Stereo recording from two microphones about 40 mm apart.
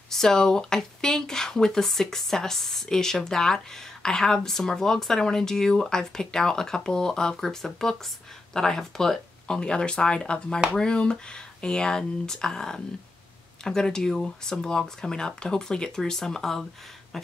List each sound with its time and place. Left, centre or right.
0.1 s speech: centre
7.3 s speech: centre
17.1 s a sound: centre